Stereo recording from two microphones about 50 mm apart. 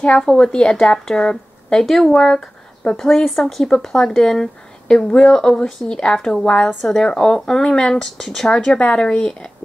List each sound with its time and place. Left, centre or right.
0.3 s a woman's voice: centre
8.7 s a woman's voice: left
9.0 s speech: centre